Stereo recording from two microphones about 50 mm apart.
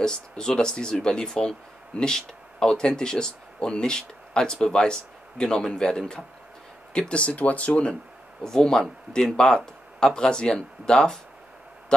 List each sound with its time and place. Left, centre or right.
0.0 s speech: centre
8.5 s speech: centre